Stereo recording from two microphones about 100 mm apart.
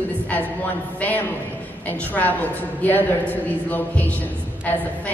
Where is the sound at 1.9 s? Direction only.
15° left (ahead or behind).